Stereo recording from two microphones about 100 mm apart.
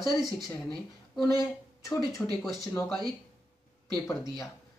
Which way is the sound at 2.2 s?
15° left (ahead or behind).